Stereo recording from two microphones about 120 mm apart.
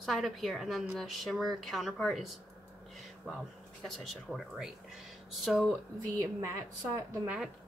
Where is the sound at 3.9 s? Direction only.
Centre (ahead or behind).